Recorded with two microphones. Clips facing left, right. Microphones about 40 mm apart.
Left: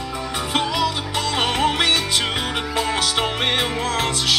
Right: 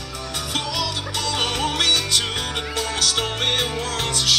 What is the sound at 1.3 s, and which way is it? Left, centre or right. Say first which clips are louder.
Music: left 4 dB; centre.